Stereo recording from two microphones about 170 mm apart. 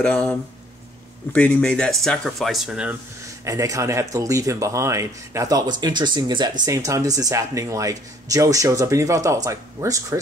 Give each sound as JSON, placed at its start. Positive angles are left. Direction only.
{"t": 0.0, "sound": "speech", "side_deg": 5}
{"t": 3.4, "sound": "speech", "side_deg": -20}